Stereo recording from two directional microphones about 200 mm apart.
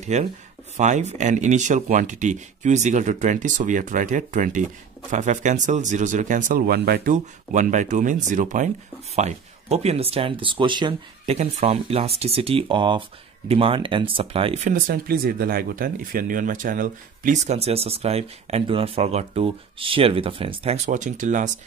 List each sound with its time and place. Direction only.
0.0 s speech: 35° right (ahead or behind)
14.9 s speech: 50° right (ahead or behind)